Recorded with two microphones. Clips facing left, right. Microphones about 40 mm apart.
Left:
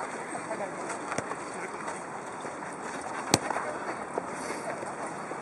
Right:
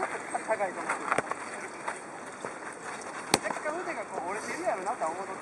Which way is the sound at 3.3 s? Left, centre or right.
Centre.